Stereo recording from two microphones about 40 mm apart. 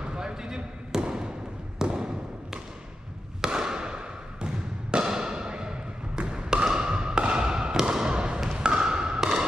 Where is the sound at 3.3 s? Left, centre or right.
Centre.